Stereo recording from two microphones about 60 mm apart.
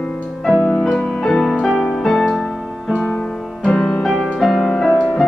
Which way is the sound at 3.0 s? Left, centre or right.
Centre.